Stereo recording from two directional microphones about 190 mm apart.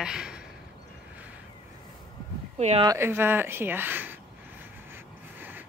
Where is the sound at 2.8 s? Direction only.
15° right (ahead or behind).